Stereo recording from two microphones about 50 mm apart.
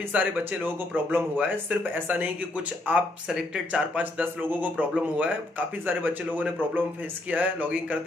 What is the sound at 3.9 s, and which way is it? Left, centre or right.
Speech, right.